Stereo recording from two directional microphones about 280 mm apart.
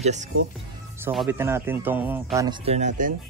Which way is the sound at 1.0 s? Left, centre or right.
Centre.